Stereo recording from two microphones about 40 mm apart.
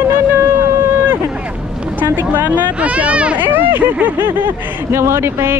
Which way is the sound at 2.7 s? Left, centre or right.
Right.